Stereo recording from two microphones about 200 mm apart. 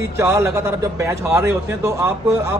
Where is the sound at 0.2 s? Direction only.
15° right (ahead or behind).